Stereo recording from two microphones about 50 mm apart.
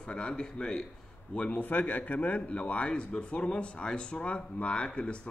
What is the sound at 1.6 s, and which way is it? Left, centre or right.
Speech, left.